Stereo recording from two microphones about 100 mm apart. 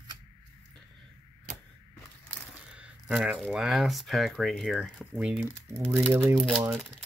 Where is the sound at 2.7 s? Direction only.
10° right (ahead or behind).